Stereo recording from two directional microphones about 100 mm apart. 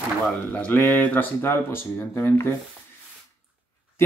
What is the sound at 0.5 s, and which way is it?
Speech, 15° left (ahead or behind).